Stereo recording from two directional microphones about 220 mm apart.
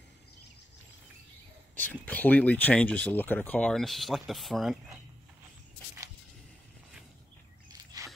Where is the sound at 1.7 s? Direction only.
5° left (ahead or behind).